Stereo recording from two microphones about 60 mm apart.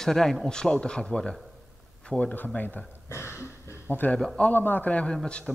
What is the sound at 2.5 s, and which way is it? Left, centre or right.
Speech, left.